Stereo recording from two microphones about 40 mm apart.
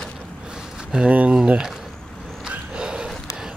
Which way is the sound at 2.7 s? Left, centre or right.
Right.